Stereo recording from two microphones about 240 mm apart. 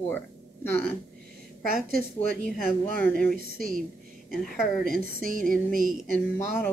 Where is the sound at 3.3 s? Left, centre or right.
Right.